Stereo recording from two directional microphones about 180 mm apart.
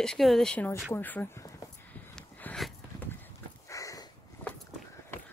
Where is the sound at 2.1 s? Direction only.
5° left (ahead or behind).